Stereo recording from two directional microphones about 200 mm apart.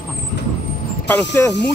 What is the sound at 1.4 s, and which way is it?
Speech, 10° left (ahead or behind).